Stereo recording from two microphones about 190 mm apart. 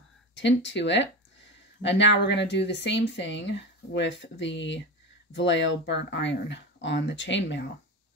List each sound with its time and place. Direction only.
0.3 s speech: 70° left (ahead or behind)